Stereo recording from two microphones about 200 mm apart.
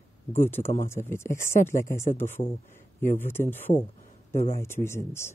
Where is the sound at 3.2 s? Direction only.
10° left (ahead or behind).